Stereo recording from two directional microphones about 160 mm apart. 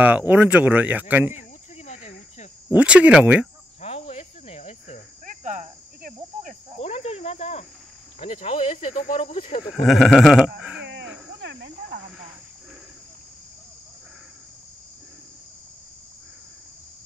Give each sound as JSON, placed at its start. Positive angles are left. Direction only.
{"t": 0.0, "sound": "speech", "side_deg": -10}
{"t": 1.3, "sound": "cricket", "side_deg": 45}
{"t": 2.7, "sound": "speech", "side_deg": -10}
{"t": 3.8, "sound": "cricket", "side_deg": 40}
{"t": 5.2, "sound": "cricket", "side_deg": -50}
{"t": 6.8, "sound": "cricket", "side_deg": 40}
{"t": 8.3, "sound": "speech", "side_deg": 45}
{"t": 8.9, "sound": "cricket", "side_deg": 65}
{"t": 9.2, "sound": "speech", "side_deg": 35}
{"t": 9.8, "sound": "speech", "side_deg": 0}
{"t": 10.8, "sound": "cricket", "side_deg": -90}
{"t": 11.4, "sound": "insect", "side_deg": -90}